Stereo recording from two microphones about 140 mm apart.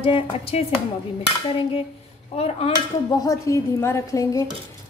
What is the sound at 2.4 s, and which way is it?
Speech, 45° left (ahead or behind).